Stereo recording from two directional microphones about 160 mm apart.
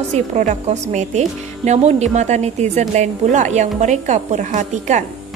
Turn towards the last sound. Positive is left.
turn(degrees=-50)  # may be behind; listen again after turning